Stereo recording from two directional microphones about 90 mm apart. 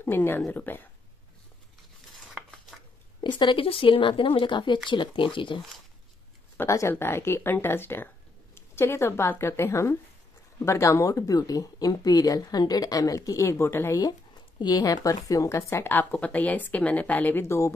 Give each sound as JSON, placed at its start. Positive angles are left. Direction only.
{"t": 0.0, "sound": "a woman's voice", "side_deg": 25}
{"t": 3.2, "sound": "speech", "side_deg": 60}
{"t": 6.9, "sound": "a woman's voice", "side_deg": 25}
{"t": 14.6, "sound": "a woman's voice", "side_deg": 45}